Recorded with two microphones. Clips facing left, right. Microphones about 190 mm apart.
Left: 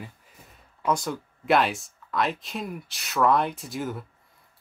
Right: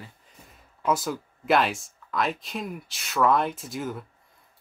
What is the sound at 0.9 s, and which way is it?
Speech, 5° right (ahead or behind).